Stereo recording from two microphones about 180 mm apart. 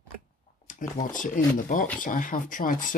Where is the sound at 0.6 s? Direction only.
45° left (ahead or behind).